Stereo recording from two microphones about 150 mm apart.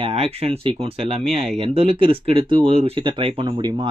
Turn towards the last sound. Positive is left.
turn(degrees=-30)  # may be behind; listen again after turning